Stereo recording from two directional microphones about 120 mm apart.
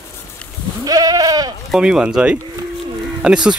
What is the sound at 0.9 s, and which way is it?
Goat, 30° right (ahead or behind).